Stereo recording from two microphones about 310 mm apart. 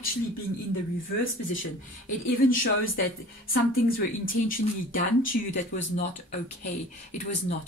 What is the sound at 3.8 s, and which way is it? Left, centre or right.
Speech, left.